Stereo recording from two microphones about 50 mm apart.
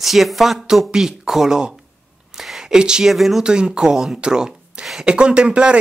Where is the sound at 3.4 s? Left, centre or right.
Centre.